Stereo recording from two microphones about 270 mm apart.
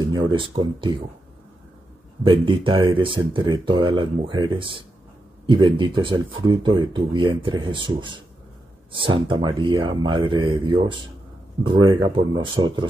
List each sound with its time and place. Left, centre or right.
0.1 s speech: centre
2.2 s speech: centre